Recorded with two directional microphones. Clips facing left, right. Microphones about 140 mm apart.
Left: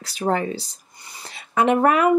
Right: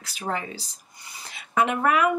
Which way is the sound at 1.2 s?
35° left (ahead or behind).